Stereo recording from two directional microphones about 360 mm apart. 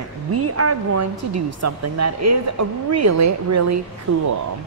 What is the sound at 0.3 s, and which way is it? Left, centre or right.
A woman's voice, right.